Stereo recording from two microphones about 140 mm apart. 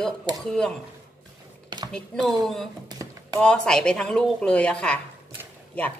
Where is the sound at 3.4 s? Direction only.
5° left (ahead or behind).